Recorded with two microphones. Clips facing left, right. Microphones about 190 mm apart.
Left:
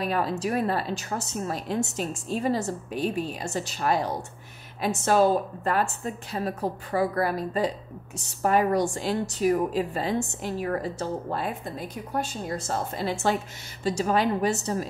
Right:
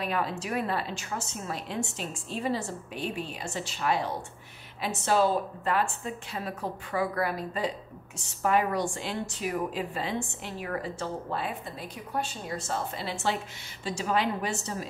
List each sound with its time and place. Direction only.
0.0 s a woman's voice: 40° left (ahead or behind)